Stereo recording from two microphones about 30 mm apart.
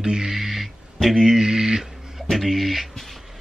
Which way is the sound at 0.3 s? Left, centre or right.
Centre.